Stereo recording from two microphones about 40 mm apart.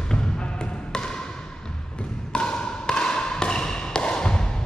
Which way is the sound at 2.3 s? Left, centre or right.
Left.